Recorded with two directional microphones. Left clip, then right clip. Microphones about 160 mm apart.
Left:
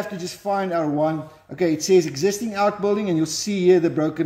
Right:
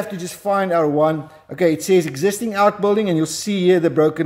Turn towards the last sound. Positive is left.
turn(degrees=-40)  # may be behind; listen again after turning